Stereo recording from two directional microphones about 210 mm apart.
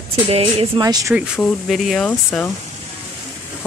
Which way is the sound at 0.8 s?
15° right (ahead or behind).